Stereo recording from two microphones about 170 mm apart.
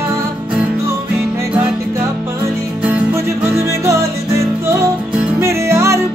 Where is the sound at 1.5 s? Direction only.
10° right (ahead or behind).